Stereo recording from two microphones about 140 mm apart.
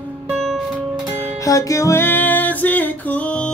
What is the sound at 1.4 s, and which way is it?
Music, 25° left (ahead or behind).